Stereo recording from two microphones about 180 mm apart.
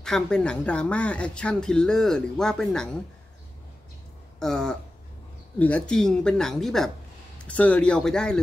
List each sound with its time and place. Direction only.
0.0 s speech: 5° left (ahead or behind)
4.4 s speech: 5° left (ahead or behind)